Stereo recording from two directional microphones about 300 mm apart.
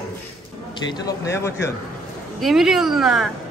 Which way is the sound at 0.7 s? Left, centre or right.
Centre.